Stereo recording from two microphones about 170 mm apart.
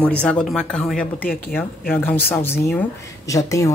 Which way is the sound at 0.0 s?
5° left (ahead or behind).